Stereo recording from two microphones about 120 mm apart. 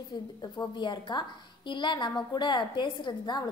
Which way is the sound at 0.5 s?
40° left (ahead or behind).